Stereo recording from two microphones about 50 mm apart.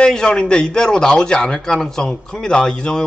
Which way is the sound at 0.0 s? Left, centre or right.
Centre.